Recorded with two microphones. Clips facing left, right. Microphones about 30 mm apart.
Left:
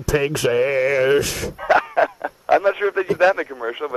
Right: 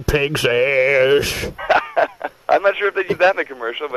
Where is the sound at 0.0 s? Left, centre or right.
Right.